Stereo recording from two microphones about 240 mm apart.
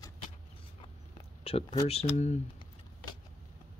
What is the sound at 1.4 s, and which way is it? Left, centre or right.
Speech, left.